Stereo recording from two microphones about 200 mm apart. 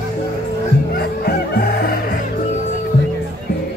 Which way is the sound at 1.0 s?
50° left (ahead or behind).